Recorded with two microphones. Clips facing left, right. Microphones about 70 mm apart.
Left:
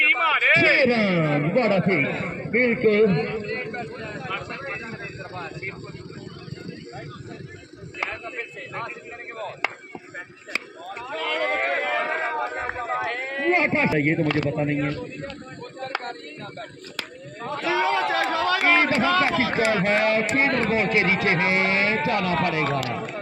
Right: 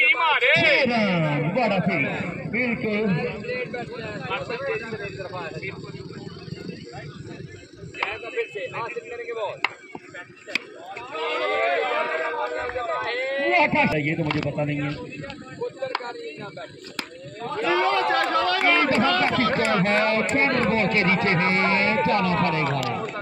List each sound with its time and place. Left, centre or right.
0.0 s a sound: centre
0.6 s a man's voice: left
3.5 s a man's voice: left
8.1 s a man's voice: left
10.5 s speech: centre
13.6 s a man's voice: left
17.5 s speech: centre